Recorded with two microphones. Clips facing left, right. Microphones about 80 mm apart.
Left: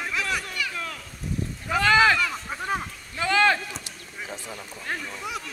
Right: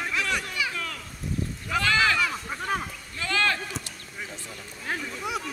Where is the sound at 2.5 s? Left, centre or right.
Centre.